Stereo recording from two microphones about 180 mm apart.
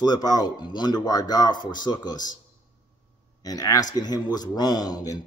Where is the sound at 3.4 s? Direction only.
20° left (ahead or behind).